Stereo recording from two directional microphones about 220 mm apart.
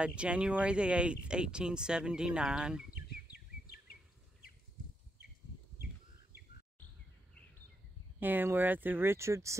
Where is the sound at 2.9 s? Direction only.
45° left (ahead or behind).